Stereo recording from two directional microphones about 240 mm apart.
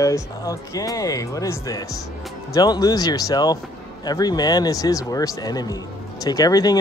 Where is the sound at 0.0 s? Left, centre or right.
Centre.